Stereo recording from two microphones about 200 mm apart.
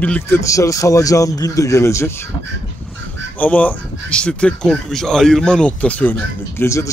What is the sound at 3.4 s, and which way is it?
Speech, 10° left (ahead or behind).